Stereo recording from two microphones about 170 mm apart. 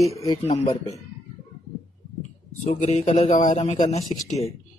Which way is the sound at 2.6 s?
40° left (ahead or behind).